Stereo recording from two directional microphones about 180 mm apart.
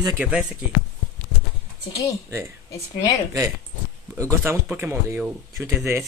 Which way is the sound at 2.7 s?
20° left (ahead or behind).